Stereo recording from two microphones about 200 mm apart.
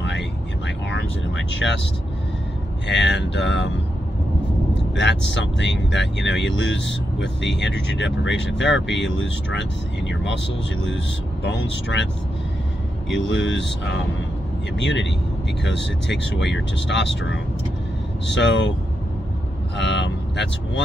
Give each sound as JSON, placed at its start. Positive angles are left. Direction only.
{"t": 0.0, "sound": "vehicle", "side_deg": 60}
{"t": 2.9, "sound": "speech", "side_deg": 60}
{"t": 4.7, "sound": "speech", "side_deg": 65}
{"t": 11.4, "sound": "speech", "side_deg": 65}
{"t": 13.1, "sound": "speech", "side_deg": 65}
{"t": 19.8, "sound": "speech", "side_deg": 65}